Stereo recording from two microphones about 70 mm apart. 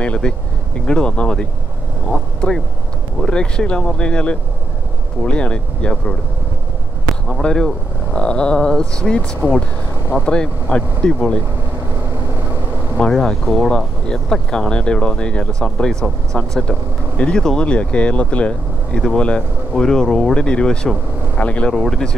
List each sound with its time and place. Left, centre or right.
0.0 s speech: centre
7.2 s speech: centre
9.4 s speech: left
10.2 s speech: centre
13.0 s speech: centre